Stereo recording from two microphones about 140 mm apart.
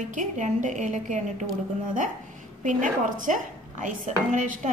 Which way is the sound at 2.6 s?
70° right (ahead or behind).